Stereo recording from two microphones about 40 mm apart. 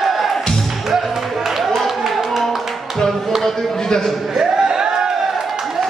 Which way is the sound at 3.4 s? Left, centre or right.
Centre.